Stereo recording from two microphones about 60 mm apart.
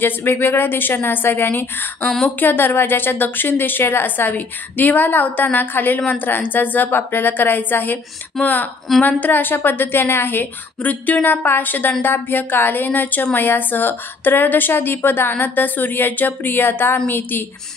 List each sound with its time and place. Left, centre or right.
0.0 s a woman's voice: left
8.4 s speech: centre
9.2 s a woman's voice: left